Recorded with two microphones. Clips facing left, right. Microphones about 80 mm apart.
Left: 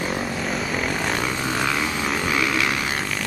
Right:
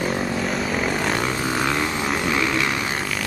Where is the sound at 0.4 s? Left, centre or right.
Centre.